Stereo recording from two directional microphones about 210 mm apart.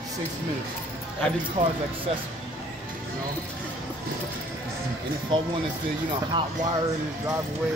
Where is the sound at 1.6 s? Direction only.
40° right (ahead or behind).